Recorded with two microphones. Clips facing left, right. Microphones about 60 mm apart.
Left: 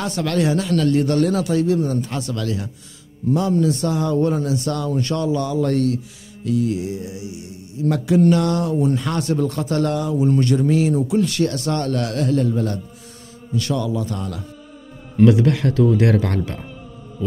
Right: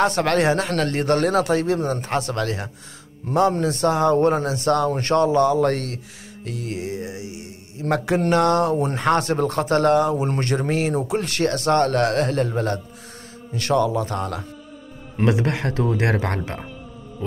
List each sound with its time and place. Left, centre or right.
0.0 s speech: right
15.1 s speech: right